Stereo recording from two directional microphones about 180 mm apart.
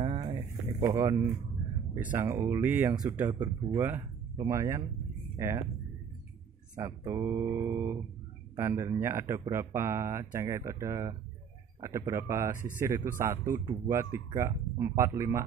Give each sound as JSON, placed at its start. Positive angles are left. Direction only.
{"t": 0.0, "sound": "a sound", "side_deg": -25}
{"t": 2.0, "sound": "speech", "side_deg": -10}
{"t": 6.7, "sound": "speech", "side_deg": -20}